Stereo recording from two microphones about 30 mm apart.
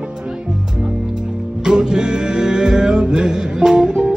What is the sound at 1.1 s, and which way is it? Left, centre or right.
Music, right.